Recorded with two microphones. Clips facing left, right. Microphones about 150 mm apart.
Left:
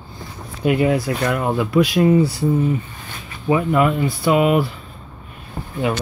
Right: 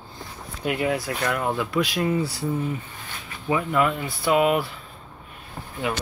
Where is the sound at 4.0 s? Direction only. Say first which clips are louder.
Left 4 dB; 5° left (ahead or behind).